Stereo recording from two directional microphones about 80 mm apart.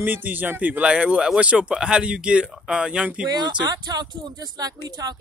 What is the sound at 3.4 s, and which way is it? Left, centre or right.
Speech, right.